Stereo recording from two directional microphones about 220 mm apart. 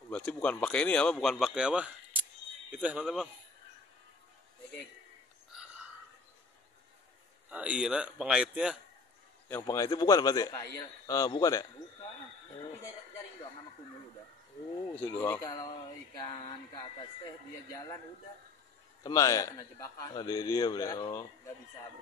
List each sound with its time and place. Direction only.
0.1 s speech: 5° left (ahead or behind)
5.5 s a sound: 5° right (ahead or behind)
7.4 s speech: 5° right (ahead or behind)
9.5 s a man's voice: 15° left (ahead or behind)
15.0 s a man's voice: 10° left (ahead or behind)
16.2 s a sound: 20° left (ahead or behind)
17.6 s a man's voice: 15° left (ahead or behind)
19.0 s a man's voice: 15° left (ahead or behind)